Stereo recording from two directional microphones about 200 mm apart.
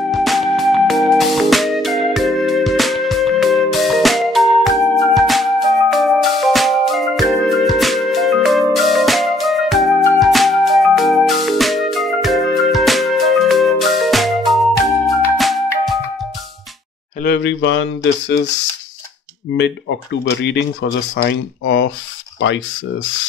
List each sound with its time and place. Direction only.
0.1 s music: centre (ahead or behind)
17.2 s speech: 60° left (ahead or behind)
19.5 s speech: 60° left (ahead or behind)